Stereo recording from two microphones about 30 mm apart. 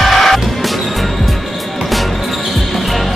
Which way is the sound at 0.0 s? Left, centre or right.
Centre.